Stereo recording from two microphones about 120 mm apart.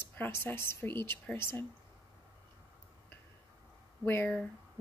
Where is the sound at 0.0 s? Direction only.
15° left (ahead or behind).